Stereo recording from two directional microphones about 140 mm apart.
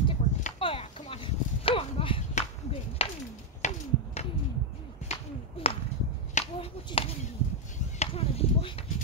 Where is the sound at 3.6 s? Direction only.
50° left (ahead or behind).